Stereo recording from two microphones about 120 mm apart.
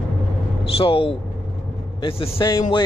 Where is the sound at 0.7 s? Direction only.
50° left (ahead or behind).